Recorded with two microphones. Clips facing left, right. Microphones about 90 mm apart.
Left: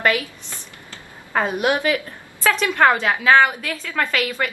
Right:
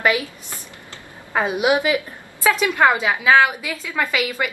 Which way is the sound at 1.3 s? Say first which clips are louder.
Right 1 dB; 10° right (ahead or behind).